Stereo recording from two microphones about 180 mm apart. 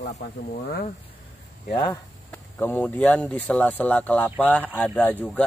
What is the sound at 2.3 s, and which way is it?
Speech, 10° left (ahead or behind).